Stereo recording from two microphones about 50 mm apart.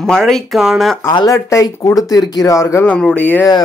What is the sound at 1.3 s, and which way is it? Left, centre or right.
Speech, left.